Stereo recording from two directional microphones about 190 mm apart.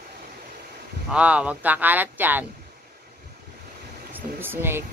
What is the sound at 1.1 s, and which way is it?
Speech, 5° right (ahead or behind).